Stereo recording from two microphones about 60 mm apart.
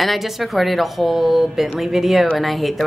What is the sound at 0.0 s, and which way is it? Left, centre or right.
Speech, centre.